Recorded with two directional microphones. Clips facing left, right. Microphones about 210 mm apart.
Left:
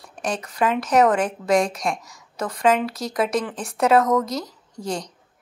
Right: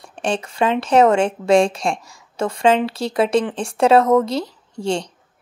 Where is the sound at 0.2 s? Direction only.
30° right (ahead or behind).